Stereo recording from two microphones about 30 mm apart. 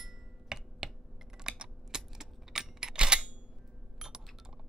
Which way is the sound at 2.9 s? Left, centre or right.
Right.